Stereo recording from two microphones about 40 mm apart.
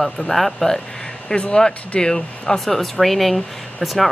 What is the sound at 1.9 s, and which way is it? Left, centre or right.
Speech, centre.